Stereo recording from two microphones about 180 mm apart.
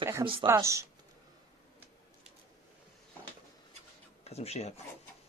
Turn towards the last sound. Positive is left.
turn(degrees=35)  # may be behind; listen again after turning